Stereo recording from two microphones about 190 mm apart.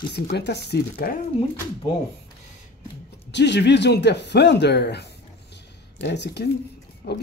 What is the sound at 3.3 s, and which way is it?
Speech, 65° left (ahead or behind).